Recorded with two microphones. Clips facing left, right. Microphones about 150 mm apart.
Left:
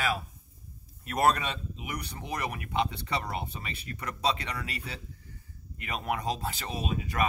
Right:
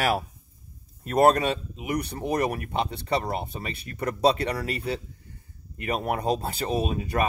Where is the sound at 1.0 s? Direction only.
35° right (ahead or behind).